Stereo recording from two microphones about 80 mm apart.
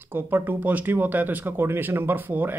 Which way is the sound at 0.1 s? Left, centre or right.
Right.